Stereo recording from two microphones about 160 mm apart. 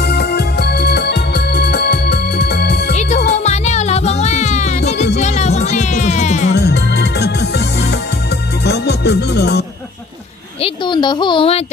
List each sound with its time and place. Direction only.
0.0 s organ: 90° left
2.9 s music: 45° left (ahead or behind)
6.5 s music: 90° left
10.6 s a sound: 30° left (ahead or behind)